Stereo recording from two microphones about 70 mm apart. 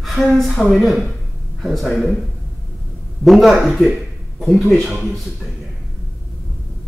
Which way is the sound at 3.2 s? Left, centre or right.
Centre.